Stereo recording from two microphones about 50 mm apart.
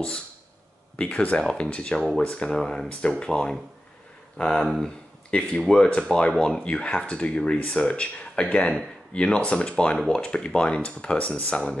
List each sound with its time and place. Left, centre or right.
0.9 s speech: left
4.8 s speech: left